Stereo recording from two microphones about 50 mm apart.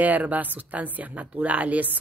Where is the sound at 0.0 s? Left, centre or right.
Right.